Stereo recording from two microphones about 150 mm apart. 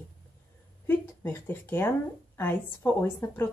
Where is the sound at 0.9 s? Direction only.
15° left (ahead or behind).